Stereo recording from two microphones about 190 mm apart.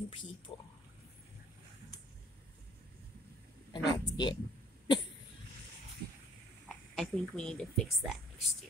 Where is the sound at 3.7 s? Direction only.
20° left (ahead or behind).